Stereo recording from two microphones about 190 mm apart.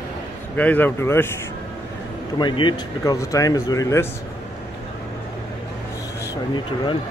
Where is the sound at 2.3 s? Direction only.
25° left (ahead or behind).